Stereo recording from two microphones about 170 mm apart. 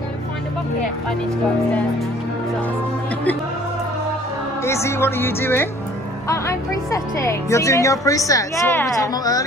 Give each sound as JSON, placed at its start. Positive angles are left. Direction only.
{"t": 4.6, "sound": "a woman's voice", "side_deg": 15}